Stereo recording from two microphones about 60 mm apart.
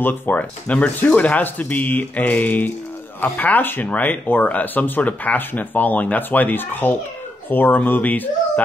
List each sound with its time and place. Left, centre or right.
0.0 s speech: left